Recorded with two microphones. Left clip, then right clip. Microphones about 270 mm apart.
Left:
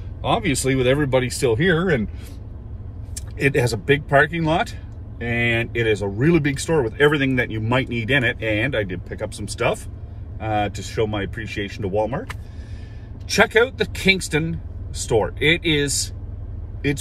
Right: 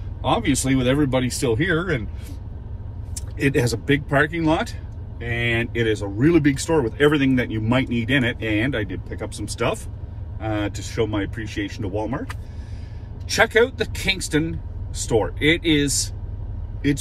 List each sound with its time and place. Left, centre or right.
0.2 s speech: centre
3.2 s speech: centre
13.3 s speech: centre